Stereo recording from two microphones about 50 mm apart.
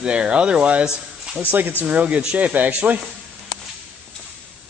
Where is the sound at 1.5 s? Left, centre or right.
Right.